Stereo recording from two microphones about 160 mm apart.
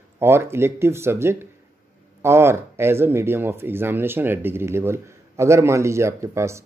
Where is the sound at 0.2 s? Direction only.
15° right (ahead or behind).